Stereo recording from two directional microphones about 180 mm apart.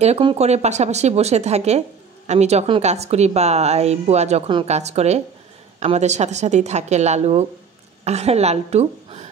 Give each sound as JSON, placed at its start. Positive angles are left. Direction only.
{"t": 0.0, "sound": "a woman's voice", "side_deg": -35}